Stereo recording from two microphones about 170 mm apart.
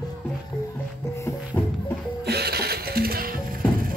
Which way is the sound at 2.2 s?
70° right (ahead or behind).